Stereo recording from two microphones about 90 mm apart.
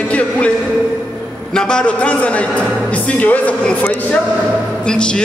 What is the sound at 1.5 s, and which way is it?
Speech, 10° left (ahead or behind).